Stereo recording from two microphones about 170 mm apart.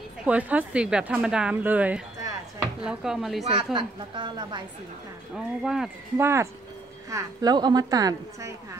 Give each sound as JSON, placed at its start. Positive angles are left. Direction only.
{"t": 0.2, "sound": "a woman's voice", "side_deg": -10}
{"t": 3.5, "sound": "a woman's voice", "side_deg": -30}
{"t": 5.3, "sound": "speech", "side_deg": -5}
{"t": 6.1, "sound": "a woman's voice", "side_deg": -15}